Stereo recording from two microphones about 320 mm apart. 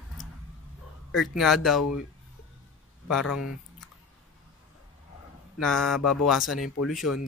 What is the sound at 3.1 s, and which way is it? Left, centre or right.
Speech, centre.